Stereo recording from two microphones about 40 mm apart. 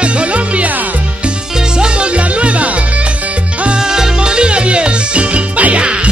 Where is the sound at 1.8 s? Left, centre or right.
Right.